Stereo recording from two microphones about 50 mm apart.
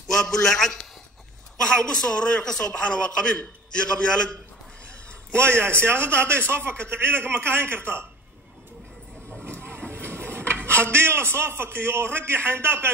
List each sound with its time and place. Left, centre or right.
0.1 s a man's voice: centre
5.6 s a man's voice: right
9.4 s vehicle: right
10.5 s a man's voice: right